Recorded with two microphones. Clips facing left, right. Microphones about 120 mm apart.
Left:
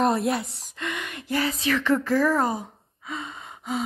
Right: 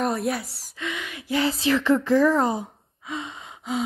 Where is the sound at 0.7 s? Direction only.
5° right (ahead or behind).